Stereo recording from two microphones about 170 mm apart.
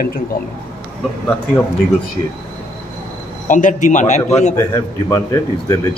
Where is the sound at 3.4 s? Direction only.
50° left (ahead or behind).